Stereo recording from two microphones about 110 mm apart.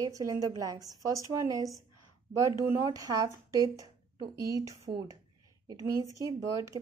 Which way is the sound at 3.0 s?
30° right (ahead or behind).